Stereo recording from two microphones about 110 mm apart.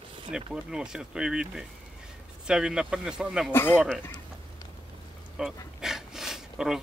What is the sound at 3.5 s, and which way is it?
Speech, 20° left (ahead or behind).